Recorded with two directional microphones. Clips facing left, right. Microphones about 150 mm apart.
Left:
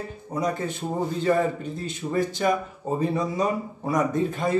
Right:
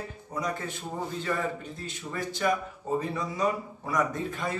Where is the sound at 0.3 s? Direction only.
25° left (ahead or behind).